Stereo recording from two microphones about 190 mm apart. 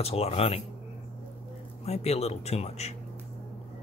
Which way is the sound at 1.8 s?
35° left (ahead or behind).